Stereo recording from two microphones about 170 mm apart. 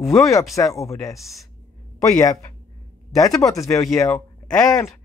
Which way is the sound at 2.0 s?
20° left (ahead or behind).